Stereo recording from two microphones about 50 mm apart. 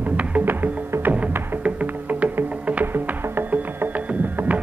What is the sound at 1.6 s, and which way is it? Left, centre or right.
Music, right.